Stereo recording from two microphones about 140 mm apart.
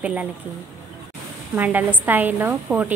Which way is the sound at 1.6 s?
15° right (ahead or behind).